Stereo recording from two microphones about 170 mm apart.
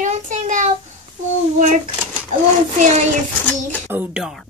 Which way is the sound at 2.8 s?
45° right (ahead or behind).